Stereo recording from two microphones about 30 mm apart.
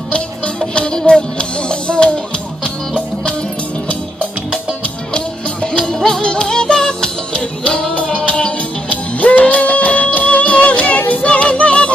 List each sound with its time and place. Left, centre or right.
0.7 s music: left
5.1 s music: left
7.9 s music: left